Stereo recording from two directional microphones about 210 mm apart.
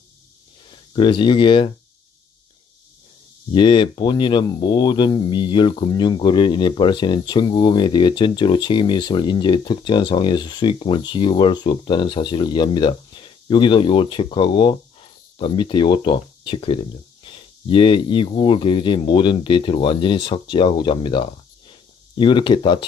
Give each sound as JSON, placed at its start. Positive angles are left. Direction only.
{"t": 0.7, "sound": "speech", "side_deg": 25}
{"t": 3.5, "sound": "speech", "side_deg": 25}